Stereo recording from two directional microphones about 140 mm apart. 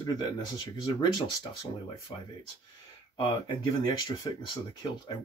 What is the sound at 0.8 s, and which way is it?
Speech, 30° left (ahead or behind).